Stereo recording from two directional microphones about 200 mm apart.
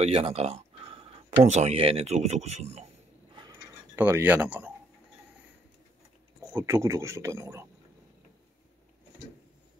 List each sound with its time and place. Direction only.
0.0 s a sound: 30° right (ahead or behind)
3.9 s speech: 10° right (ahead or behind)
6.4 s a man's voice: 10° right (ahead or behind)